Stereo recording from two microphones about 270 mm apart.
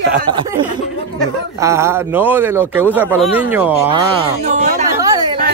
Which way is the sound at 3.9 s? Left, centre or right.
Right.